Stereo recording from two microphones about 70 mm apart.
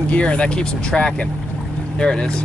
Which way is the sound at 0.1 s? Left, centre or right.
Centre.